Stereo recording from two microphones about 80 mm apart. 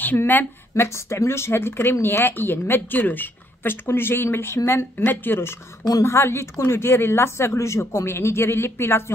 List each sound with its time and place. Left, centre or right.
0.0 s speech: left